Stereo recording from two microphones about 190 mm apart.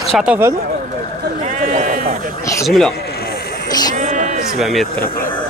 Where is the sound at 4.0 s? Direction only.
40° right (ahead or behind).